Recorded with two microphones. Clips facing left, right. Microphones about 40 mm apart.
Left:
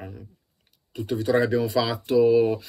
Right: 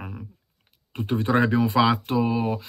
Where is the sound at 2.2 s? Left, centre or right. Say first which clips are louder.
Left 6 dB; centre.